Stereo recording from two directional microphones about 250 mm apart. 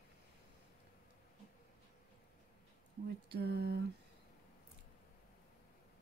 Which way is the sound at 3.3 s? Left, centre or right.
Right.